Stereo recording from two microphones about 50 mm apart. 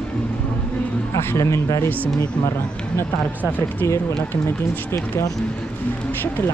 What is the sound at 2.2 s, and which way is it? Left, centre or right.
Speech, left.